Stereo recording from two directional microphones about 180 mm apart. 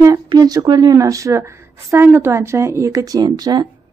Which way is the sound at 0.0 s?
20° right (ahead or behind).